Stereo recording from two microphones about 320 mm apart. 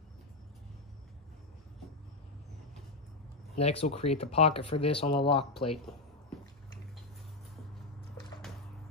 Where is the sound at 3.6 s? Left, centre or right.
Centre.